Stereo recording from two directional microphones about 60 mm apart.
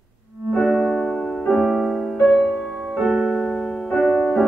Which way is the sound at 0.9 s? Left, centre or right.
Centre.